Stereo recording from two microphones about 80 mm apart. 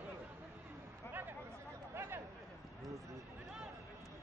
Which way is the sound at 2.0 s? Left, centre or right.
Right.